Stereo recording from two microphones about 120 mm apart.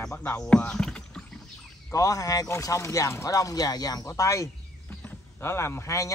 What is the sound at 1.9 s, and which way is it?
Speech, 30° left (ahead or behind).